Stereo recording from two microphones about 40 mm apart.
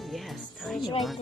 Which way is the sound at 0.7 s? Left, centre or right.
Centre.